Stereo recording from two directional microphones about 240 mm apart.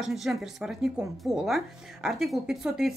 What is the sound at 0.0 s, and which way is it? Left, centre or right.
Speech, centre.